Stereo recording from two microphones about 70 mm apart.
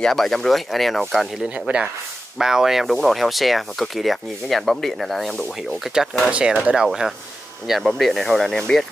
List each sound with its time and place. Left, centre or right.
0.0 s speech: centre
1.4 s speech: centre
6.3 s speech: centre